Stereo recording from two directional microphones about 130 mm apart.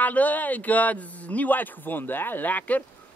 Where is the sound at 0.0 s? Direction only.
10° left (ahead or behind).